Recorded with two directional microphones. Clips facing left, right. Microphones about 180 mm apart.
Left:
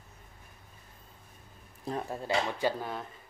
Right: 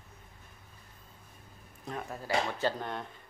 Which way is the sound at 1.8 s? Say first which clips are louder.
Left 4 dB; 30° left (ahead or behind).